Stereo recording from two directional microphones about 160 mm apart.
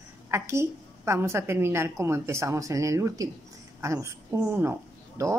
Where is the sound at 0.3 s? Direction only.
15° right (ahead or behind).